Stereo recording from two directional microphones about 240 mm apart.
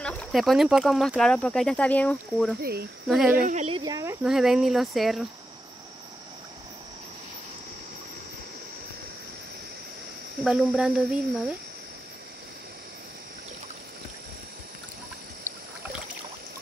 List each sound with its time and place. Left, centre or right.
0.0 s speech: centre
2.6 s speech: right
3.1 s speech: centre
3.3 s speech: right; by 5.2 s centre
10.4 s speech: centre